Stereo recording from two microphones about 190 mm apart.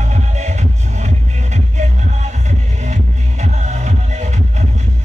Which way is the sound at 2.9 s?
35° right (ahead or behind).